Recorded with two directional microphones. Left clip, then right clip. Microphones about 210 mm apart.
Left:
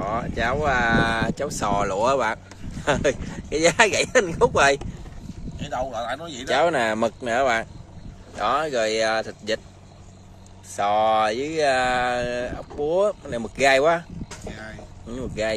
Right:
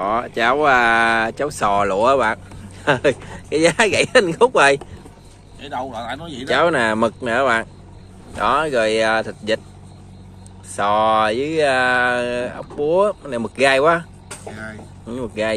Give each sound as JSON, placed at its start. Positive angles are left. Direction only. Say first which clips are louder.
{"t": 0.0, "sound": "speech", "louder": "right 7 dB", "side_deg": -15}
{"t": 5.6, "sound": "a man's voice", "louder": "right 1 dB", "side_deg": 20}
{"t": 6.4, "sound": "speech", "louder": "right 4 dB", "side_deg": 5}
{"t": 10.8, "sound": "speech", "louder": "right 4 dB", "side_deg": 0}